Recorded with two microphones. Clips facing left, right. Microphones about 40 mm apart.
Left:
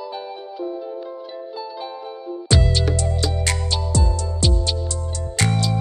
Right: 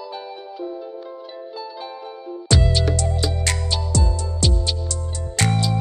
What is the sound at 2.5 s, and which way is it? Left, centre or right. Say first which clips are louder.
Music: even; centre.